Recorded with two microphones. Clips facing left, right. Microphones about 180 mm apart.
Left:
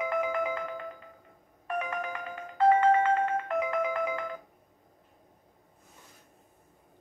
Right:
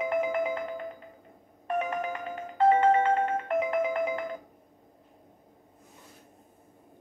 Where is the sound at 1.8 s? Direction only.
20° right (ahead or behind).